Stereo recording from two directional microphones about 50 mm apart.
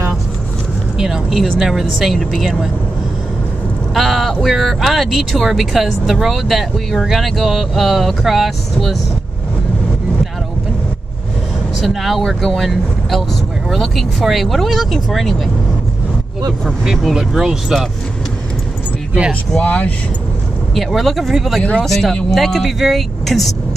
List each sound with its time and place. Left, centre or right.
0.9 s speech: centre
3.9 s speech: centre
11.8 s speech: centre
16.9 s speech: centre
19.6 s speech: left
20.7 s speech: centre